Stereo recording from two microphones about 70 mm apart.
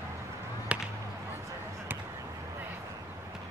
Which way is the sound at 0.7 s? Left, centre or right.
Centre.